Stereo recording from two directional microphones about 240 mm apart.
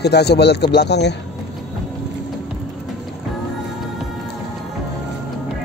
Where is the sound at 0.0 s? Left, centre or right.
Left.